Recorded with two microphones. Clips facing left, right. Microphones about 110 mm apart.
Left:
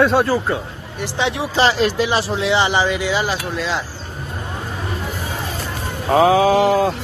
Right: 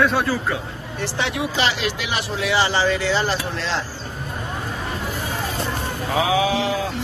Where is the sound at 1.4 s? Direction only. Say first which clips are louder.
Left 8 dB; 35° left (ahead or behind); by 3.8 s 10° left (ahead or behind).